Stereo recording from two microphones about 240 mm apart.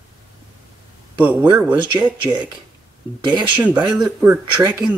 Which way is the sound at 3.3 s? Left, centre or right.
Centre.